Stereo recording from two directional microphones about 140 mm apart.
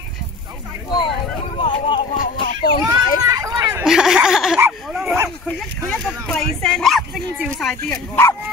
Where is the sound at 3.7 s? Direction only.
5° right (ahead or behind).